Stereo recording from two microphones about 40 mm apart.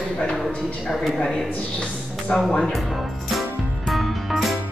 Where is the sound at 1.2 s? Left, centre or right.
Left.